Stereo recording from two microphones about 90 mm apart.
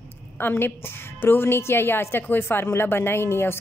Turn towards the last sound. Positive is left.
turn(degrees=25)  # may be behind; listen again after turning